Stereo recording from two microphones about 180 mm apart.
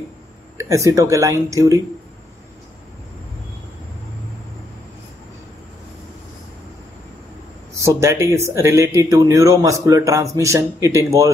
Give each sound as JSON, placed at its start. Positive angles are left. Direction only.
{"t": 0.6, "sound": "speech", "side_deg": -15}
{"t": 7.8, "sound": "speech", "side_deg": -15}